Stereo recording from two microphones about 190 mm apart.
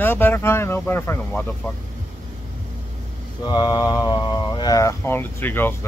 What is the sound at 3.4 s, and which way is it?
Speech, 20° left (ahead or behind).